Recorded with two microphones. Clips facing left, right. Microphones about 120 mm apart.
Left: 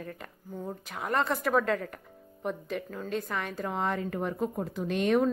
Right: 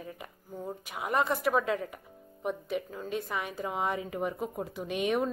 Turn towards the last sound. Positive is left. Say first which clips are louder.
# left 4 dB
turn(degrees=-5)  # may be behind; listen again after turning